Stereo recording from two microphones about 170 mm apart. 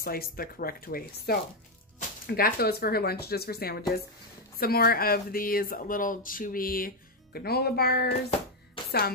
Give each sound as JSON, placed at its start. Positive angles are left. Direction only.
{"t": 0.0, "sound": "speech", "side_deg": 60}